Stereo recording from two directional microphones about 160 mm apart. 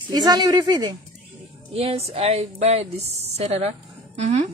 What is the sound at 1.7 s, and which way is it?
Speech, 40° right (ahead or behind).